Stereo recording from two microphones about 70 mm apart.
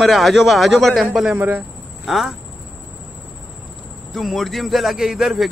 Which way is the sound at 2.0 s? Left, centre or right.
Centre.